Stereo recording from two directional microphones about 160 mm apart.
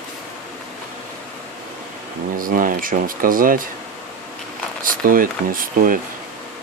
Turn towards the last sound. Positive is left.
turn(degrees=-60)  # may be behind; listen again after turning